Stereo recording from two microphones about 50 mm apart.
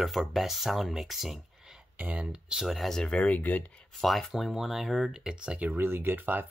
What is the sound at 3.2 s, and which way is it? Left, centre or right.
Speech, left.